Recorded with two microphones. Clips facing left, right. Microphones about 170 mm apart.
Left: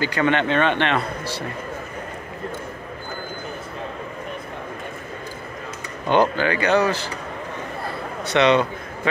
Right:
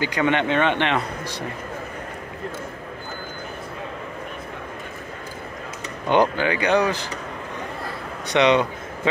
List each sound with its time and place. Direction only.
0.0 s speech: 15° right (ahead or behind)
6.0 s speech: 15° right (ahead or behind)
8.3 s a man's voice: 15° right (ahead or behind)